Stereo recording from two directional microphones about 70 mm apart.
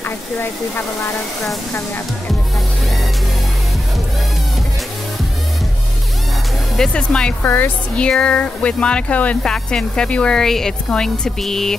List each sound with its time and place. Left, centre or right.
0.4 s speech: left
6.9 s speech: centre
7.4 s a woman's voice: left
7.9 s speech: centre
9.4 s speech: centre